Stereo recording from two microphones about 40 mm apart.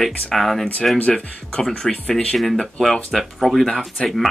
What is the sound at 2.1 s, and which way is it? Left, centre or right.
Speech, left.